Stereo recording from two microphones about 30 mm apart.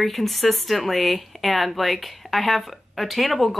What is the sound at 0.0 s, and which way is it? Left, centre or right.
Speech, centre.